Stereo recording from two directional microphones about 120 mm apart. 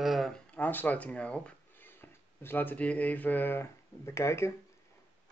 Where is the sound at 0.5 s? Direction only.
15° left (ahead or behind).